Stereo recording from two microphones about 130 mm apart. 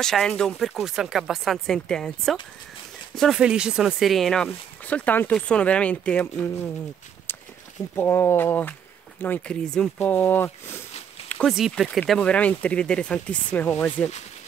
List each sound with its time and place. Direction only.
0.0 s speech: 5° left (ahead or behind)
7.3 s a sound: 20° left (ahead or behind)
7.9 s speech: 20° left (ahead or behind)
11.2 s speech: 5° left (ahead or behind)